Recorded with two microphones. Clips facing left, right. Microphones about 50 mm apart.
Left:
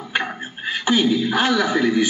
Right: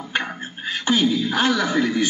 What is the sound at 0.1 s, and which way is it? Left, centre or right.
A man's voice, centre.